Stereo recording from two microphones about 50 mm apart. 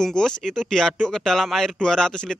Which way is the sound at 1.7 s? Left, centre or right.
Centre.